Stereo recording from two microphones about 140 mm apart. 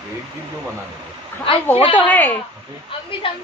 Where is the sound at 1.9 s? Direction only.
10° left (ahead or behind).